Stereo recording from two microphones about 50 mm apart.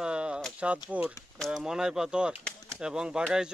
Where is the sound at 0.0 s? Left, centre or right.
Centre.